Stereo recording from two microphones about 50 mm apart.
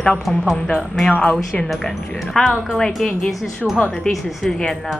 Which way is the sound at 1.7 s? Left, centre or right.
Centre.